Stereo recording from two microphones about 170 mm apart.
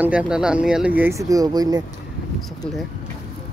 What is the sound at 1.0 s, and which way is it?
Speech, 15° right (ahead or behind).